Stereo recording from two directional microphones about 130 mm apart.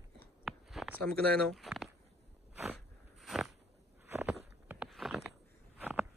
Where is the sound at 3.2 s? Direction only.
Centre (ahead or behind).